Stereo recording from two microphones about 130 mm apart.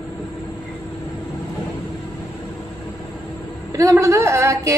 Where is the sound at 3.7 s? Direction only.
25° right (ahead or behind).